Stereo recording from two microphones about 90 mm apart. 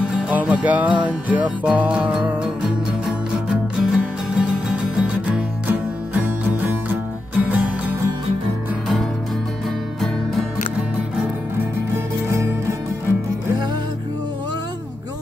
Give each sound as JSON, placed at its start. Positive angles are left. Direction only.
{"t": 0.0, "sound": "music", "side_deg": -15}
{"t": 11.9, "sound": "music", "side_deg": -30}